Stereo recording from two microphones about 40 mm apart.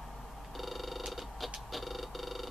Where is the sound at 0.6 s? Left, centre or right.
Centre.